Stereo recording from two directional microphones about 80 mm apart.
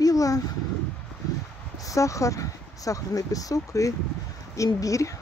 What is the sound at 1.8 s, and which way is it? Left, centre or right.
Speech, left.